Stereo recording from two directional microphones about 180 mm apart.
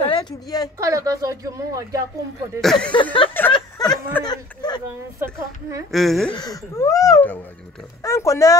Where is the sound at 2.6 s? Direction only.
Centre (ahead or behind).